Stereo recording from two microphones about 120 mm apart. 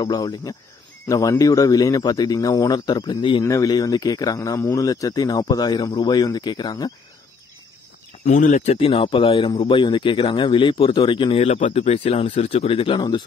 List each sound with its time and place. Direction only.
0.0 s speech: 30° left (ahead or behind)
3.4 s speech: 30° left (ahead or behind)
4.4 s speech: 20° left (ahead or behind); by 6.9 s 35° left (ahead or behind)
8.3 s speech: 90° left
8.7 s speech: 50° left (ahead or behind)